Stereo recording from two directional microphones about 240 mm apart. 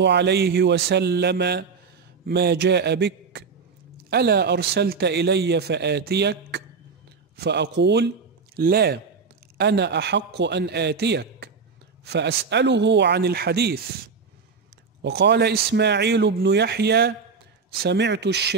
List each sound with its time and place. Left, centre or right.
0.0 s a man's voice: right
15.0 s speech: right